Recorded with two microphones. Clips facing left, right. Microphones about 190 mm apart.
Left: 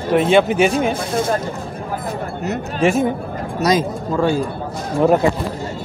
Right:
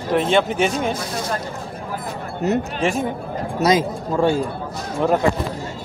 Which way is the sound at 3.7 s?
20° right (ahead or behind).